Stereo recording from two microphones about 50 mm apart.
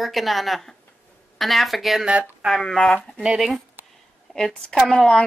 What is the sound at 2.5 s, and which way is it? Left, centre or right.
Speech, centre.